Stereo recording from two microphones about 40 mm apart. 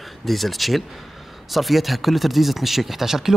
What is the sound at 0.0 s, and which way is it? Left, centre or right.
Speech, centre.